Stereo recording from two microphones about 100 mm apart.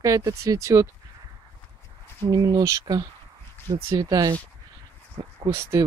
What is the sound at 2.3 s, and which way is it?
Speech, 40° right (ahead or behind).